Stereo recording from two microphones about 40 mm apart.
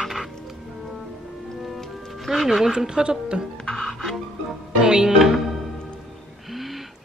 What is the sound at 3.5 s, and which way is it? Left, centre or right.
Music, centre.